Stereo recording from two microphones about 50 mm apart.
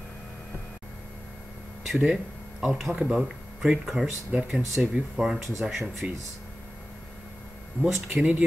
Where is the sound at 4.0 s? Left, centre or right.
Right.